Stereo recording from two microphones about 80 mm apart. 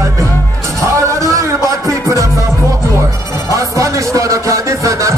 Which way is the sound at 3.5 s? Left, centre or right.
Right.